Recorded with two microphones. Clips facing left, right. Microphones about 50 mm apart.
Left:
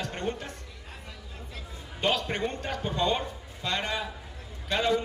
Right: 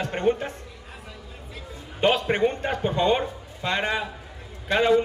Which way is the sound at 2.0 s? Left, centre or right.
Right.